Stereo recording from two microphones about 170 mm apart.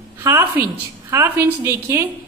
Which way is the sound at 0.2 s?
10° right (ahead or behind).